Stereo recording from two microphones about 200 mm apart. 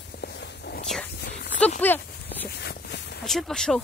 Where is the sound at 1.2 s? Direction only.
60° left (ahead or behind).